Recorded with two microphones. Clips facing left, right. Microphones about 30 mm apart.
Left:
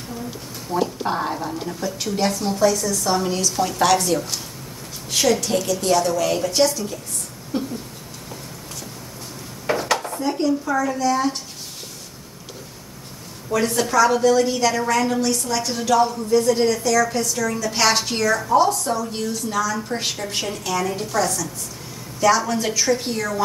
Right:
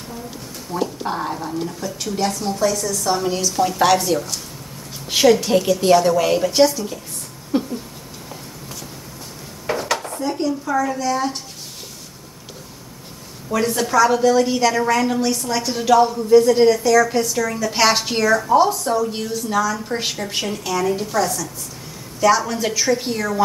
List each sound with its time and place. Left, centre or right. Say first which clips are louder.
0.7 s a woman's voice: left 1 dB; centre
5.1 s a woman's voice: right 5 dB; centre
9.7 s speech: left 1 dB; centre
13.5 s a woman's voice: right 1 dB; centre